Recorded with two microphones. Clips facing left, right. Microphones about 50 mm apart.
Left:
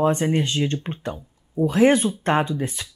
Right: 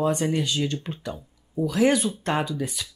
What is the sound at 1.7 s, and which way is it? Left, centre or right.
Speech, left.